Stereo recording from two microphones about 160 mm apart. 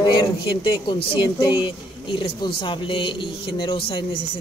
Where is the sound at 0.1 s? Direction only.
30° left (ahead or behind).